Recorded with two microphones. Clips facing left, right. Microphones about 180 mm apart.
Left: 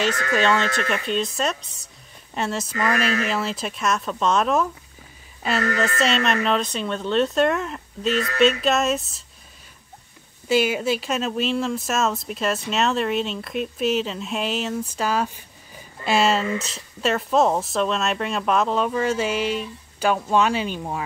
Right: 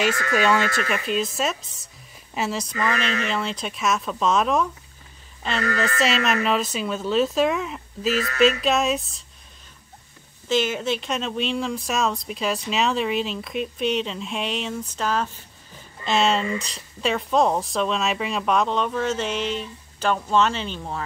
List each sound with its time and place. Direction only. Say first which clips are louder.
0.4 s speech: even; 10° right (ahead or behind)
2.9 s speech: left 4 dB; 40° left (ahead or behind)
3.3 s speech: left 1 dB; 5° left (ahead or behind)
10.5 s speech: left 2 dB; 10° left (ahead or behind)